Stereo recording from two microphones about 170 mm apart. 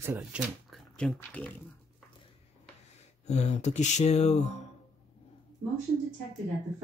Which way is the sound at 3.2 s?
40° left (ahead or behind).